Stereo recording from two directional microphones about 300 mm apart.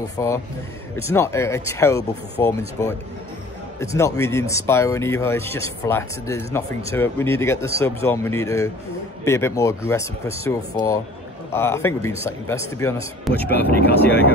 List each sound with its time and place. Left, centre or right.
0.2 s speech: centre